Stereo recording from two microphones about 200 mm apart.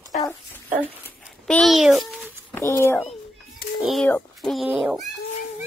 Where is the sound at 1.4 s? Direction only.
Centre (ahead or behind).